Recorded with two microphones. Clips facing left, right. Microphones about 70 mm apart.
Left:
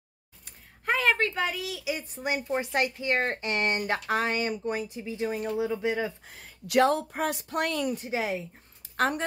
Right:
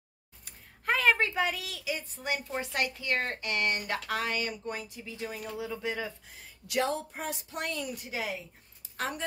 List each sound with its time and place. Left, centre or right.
0.5 s a sound: centre
1.1 s a woman's voice: centre
1.9 s a woman's voice: left
6.2 s speech: left
7.9 s a woman's voice: left
8.9 s speech: left